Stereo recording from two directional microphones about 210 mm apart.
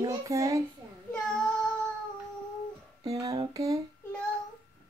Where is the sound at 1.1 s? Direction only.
5° left (ahead or behind).